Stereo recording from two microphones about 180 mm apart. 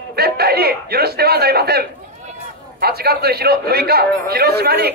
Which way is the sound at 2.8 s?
60° right (ahead or behind).